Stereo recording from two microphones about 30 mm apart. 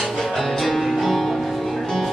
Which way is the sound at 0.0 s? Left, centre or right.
Centre.